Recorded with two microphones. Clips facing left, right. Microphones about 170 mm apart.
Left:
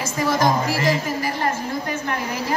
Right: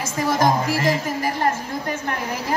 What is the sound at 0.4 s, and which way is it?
Speech, 50° right (ahead or behind).